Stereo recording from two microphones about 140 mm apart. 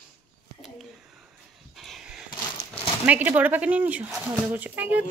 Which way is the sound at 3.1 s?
10° right (ahead or behind).